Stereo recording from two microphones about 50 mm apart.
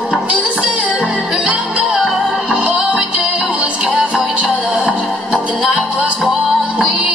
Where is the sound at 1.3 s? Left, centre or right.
Right.